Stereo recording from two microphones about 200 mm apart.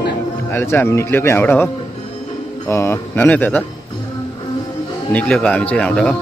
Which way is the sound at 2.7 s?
15° left (ahead or behind).